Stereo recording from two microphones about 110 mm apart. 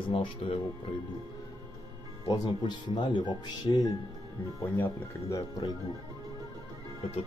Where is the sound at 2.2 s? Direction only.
40° left (ahead or behind).